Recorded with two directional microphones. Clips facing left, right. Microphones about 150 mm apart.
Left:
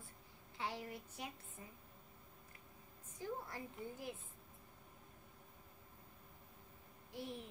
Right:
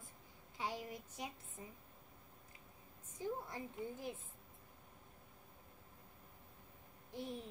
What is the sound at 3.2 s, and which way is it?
Speech, 20° right (ahead or behind).